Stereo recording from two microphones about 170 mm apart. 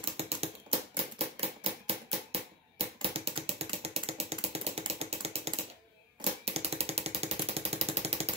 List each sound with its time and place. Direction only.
0.0 s typewriter: 35° right (ahead or behind)
2.8 s typing: 35° right (ahead or behind)
6.4 s jackhammer: 35° right (ahead or behind)